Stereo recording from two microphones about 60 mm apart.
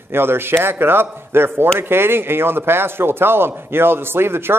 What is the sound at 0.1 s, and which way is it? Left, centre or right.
A man's voice, right.